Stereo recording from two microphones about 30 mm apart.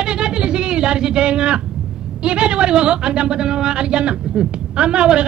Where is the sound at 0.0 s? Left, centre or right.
Right.